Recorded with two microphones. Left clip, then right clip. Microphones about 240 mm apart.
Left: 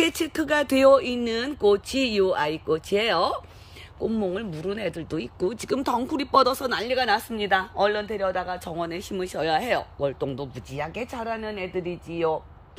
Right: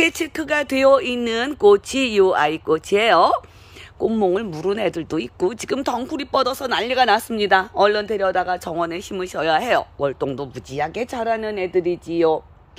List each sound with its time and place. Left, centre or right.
0.0 s speech: centre; by 12.4 s right